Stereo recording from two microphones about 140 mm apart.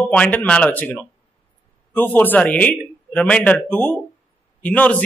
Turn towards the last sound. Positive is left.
turn(degrees=10)  # may be behind; listen again after turning